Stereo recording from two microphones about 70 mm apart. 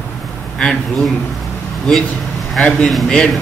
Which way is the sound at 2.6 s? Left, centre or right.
Centre.